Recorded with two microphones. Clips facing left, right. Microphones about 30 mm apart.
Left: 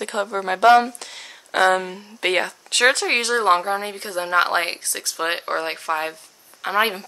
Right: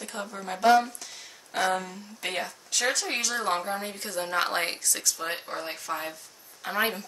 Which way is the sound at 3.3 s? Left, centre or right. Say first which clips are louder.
Left 12 dB; left.